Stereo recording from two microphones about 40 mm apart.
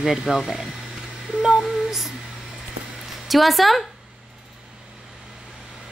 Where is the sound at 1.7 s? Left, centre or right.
Centre.